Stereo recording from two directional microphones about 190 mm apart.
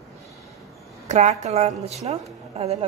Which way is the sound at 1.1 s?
35° right (ahead or behind).